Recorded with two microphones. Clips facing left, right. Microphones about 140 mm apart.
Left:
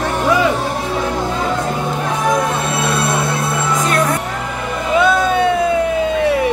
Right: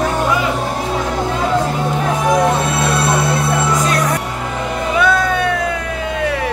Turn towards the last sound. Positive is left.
turn(degrees=20)  # may be behind; listen again after turning